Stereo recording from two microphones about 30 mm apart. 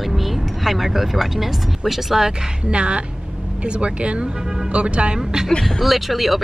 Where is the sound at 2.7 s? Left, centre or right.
Right.